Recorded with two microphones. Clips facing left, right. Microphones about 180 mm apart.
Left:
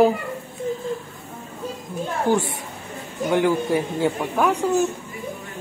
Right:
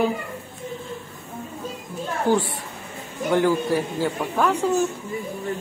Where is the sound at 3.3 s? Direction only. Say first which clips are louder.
Even; 15° left (ahead or behind).